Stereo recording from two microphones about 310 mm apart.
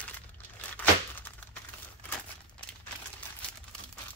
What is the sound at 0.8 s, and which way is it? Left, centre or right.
Crumpling, centre.